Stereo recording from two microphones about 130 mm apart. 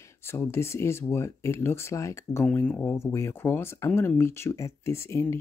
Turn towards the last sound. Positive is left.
turn(degrees=20)  # may be behind; listen again after turning